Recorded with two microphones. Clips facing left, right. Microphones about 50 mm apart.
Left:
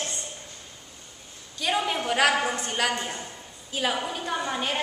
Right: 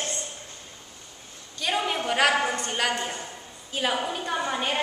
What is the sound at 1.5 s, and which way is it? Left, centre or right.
A woman's voice, centre.